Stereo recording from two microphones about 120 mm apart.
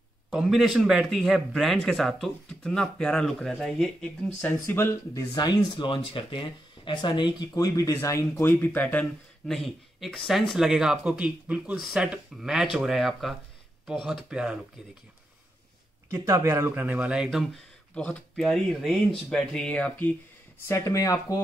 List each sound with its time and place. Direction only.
0.3 s a man's voice: centre (ahead or behind); by 9.0 s 15° left (ahead or behind)
9.5 s a man's voice: centre (ahead or behind)
16.1 s speech: 25° right (ahead or behind); by 17.5 s 5° right (ahead or behind)
17.9 s speech: 5° left (ahead or behind); by 21.4 s 30° left (ahead or behind)